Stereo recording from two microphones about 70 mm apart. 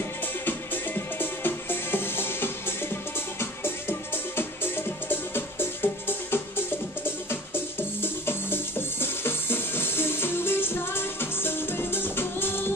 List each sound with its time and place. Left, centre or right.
0.5 s music: left